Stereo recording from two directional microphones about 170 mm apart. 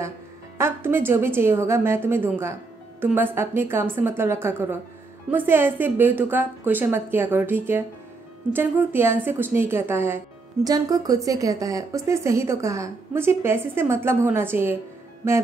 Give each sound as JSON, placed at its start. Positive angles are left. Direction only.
{"t": 0.6, "sound": "speech", "side_deg": -15}